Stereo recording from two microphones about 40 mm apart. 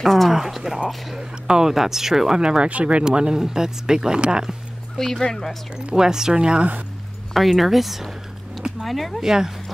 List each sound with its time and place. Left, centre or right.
0.0 s speech: centre
0.3 s speech: centre
2.4 s speech: right
4.9 s speech: centre
5.9 s speech: centre
7.3 s speech: centre
9.2 s speech: centre